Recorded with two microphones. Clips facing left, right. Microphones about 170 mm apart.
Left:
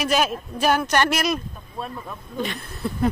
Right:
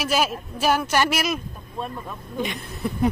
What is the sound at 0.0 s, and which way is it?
Speech, 5° right (ahead or behind).